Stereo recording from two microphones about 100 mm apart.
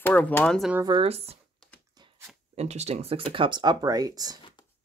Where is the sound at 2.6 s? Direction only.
90° right.